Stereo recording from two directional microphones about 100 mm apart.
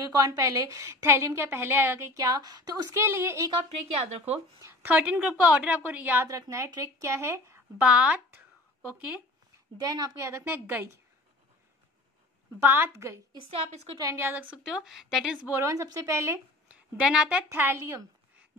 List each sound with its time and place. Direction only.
0.2 s a woman's voice: 35° right (ahead or behind)
2.3 s a woman's voice: 40° right (ahead or behind); by 3.4 s 25° right (ahead or behind)
4.6 s a sound: 25° right (ahead or behind)
4.9 s speech: 15° right (ahead or behind)
6.2 s a woman's voice: 30° right (ahead or behind)
7.8 s speech: 10° right (ahead or behind)
9.8 s a woman's voice: 40° right (ahead or behind)
12.5 s a woman's voice: 25° right (ahead or behind)
13.5 s a woman's voice: 75° right (ahead or behind)
14.1 s a woman's voice: 20° right (ahead or behind)
14.6 s speech: 5° right (ahead or behind)
15.6 s a woman's voice: 35° right (ahead or behind)
16.6 s a sound: 10° right (ahead or behind)
17.5 s a woman's voice: 25° right (ahead or behind)